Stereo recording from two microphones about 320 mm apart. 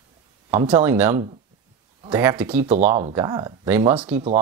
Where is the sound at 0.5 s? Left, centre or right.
Centre.